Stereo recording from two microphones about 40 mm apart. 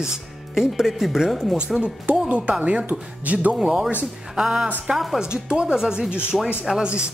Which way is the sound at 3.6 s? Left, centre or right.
Centre.